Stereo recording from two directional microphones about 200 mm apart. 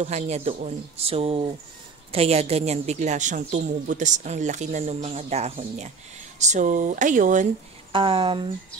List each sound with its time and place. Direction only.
0.0 s a woman's voice: 35° right (ahead or behind)
7.9 s speech: 25° right (ahead or behind)